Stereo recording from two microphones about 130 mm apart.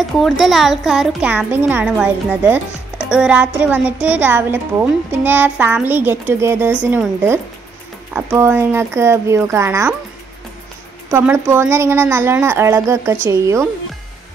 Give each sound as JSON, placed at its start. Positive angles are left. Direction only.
{"t": 0.0, "sound": "a woman's voice", "side_deg": 0}
{"t": 11.2, "sound": "speech", "side_deg": -20}